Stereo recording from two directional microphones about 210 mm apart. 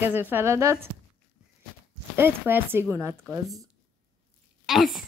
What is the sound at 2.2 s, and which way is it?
Speech, 10° right (ahead or behind).